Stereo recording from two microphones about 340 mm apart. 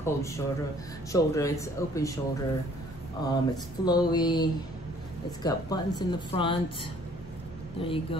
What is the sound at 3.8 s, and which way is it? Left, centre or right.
Speech, centre.